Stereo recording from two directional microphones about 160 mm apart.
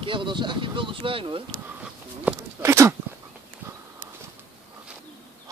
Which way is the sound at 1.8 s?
10° right (ahead or behind).